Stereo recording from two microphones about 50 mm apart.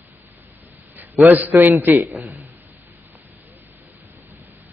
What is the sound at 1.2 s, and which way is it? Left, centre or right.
Speech, right.